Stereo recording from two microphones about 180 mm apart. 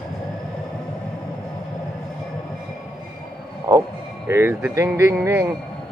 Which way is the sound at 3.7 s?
20° right (ahead or behind).